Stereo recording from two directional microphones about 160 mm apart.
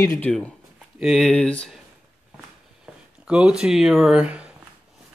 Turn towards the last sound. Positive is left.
turn(degrees=-5)  # may be behind; listen again after turning